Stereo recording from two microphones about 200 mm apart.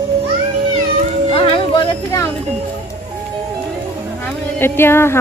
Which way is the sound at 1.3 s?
20° left (ahead or behind).